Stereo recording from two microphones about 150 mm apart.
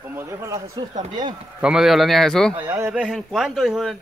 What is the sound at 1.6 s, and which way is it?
Speech, 5° right (ahead or behind).